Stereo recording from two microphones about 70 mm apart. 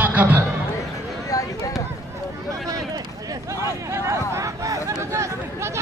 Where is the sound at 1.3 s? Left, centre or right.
Left.